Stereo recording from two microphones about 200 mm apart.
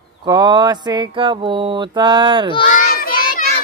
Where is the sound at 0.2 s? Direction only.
20° right (ahead or behind).